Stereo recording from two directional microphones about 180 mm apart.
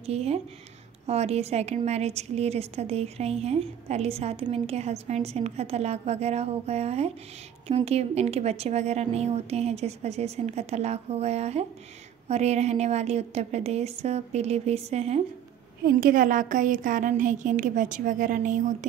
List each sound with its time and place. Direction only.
0.0 s a woman's voice: 35° right (ahead or behind)
15.8 s a woman's voice: 55° right (ahead or behind)